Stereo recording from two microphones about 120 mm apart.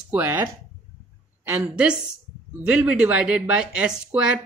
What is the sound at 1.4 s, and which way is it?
Speech, 15° right (ahead or behind).